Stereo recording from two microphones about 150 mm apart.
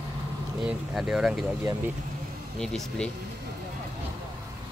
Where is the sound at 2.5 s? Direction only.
5° left (ahead or behind).